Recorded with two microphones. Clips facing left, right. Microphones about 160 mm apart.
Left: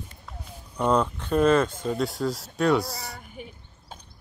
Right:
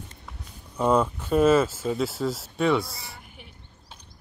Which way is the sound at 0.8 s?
5° right (ahead or behind).